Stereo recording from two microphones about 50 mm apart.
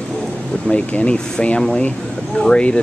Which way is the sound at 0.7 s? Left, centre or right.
Left.